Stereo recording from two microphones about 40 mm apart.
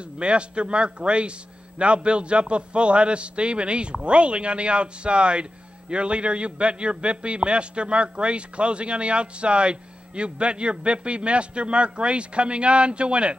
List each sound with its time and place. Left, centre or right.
0.2 s a man's voice: right